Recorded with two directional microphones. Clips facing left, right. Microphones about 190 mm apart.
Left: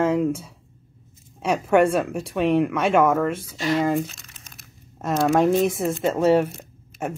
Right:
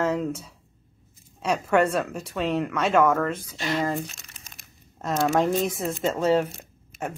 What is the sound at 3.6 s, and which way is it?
Crumpling, 5° left (ahead or behind).